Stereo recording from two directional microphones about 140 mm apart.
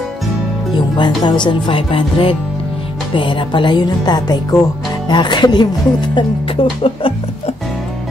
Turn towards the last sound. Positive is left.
turn(degrees=40)  # may be behind; listen again after turning